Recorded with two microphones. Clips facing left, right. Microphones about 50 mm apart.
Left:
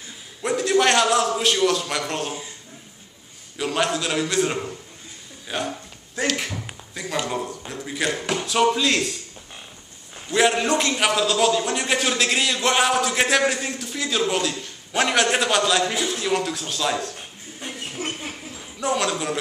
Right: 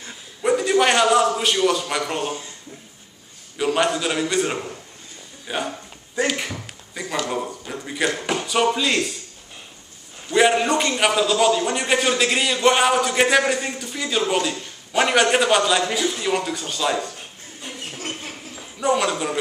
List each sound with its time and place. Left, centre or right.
0.4 s a man's voice: centre
3.5 s a man's voice: centre
5.5 s a sound: centre
7.2 s a man's voice: centre
10.3 s a man's voice: centre
17.6 s a sound: centre
18.8 s a man's voice: centre